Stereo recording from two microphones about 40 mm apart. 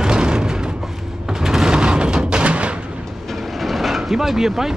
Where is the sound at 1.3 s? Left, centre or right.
Centre; by 2.7 s right.